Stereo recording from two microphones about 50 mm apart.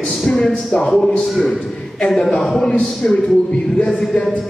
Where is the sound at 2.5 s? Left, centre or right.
Centre.